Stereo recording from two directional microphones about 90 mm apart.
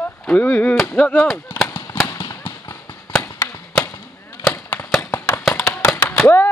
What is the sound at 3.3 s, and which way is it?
Chop, 40° left (ahead or behind).